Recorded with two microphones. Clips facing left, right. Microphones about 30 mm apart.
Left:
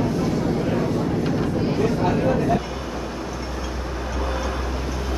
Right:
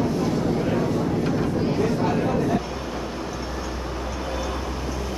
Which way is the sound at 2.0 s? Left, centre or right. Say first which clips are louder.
Left 2 dB; centre.